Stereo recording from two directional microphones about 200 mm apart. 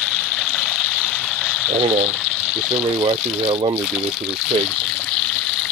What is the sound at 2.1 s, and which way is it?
Water, 5° right (ahead or behind).